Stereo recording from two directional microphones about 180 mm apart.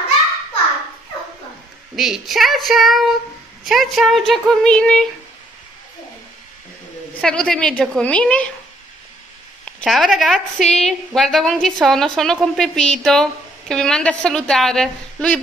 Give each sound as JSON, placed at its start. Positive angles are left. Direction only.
{"t": 2.0, "sound": "a woman's voice", "side_deg": 0}
{"t": 7.2, "sound": "a woman's voice", "side_deg": 5}
{"t": 9.8, "sound": "a woman's voice", "side_deg": 0}